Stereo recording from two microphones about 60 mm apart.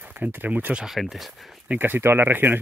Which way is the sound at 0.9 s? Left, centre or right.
Centre.